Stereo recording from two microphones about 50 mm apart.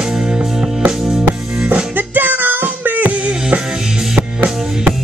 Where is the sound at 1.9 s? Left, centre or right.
Right.